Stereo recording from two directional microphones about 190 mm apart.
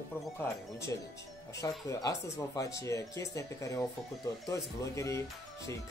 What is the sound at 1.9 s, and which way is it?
Speech, 15° left (ahead or behind).